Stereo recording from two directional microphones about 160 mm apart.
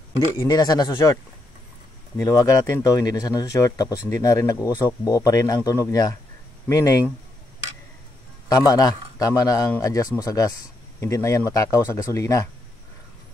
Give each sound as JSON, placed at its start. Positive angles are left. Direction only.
{"t": 0.4, "sound": "speech", "side_deg": 25}
{"t": 8.5, "sound": "speech", "side_deg": 25}